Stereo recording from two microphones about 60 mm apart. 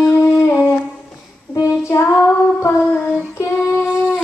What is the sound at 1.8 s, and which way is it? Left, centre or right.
Female singing, left.